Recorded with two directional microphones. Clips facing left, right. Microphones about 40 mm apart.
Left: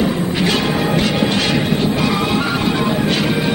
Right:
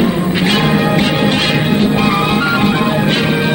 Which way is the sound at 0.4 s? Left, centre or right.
Right.